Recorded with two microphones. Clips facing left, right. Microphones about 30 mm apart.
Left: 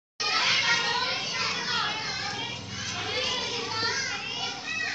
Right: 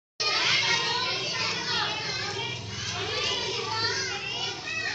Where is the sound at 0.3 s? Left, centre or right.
Centre.